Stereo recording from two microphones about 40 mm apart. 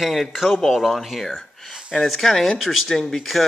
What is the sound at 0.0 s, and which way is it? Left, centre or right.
Speech, centre.